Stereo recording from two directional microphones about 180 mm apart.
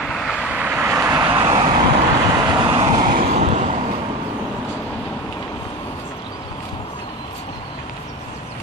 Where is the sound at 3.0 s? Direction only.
55° right (ahead or behind).